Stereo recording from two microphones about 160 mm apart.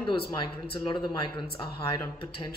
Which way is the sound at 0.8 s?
30° left (ahead or behind).